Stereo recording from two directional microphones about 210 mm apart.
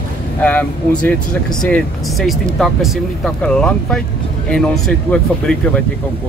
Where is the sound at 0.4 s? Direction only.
10° left (ahead or behind).